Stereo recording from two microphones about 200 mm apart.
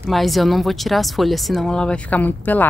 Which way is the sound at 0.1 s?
Centre (ahead or behind).